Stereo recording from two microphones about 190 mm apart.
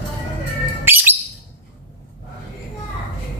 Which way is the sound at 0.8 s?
10° right (ahead or behind).